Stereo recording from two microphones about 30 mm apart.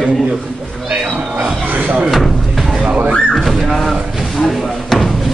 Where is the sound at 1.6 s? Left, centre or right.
Right.